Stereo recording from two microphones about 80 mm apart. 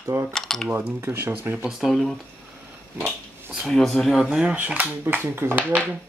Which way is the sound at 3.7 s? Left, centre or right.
Centre.